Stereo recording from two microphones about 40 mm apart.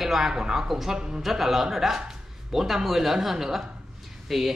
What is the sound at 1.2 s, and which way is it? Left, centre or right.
Speech, centre.